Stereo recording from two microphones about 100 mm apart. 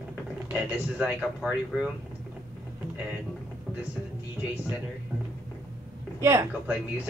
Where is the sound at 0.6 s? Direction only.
15° right (ahead or behind).